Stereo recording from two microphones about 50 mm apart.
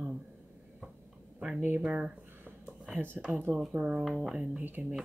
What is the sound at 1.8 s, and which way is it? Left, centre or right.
Speech, right.